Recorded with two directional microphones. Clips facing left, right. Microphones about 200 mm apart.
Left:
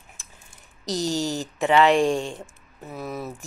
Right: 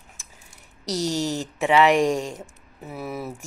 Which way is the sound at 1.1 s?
35° left (ahead or behind).